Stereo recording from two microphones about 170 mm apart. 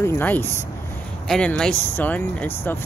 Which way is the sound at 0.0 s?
15° left (ahead or behind).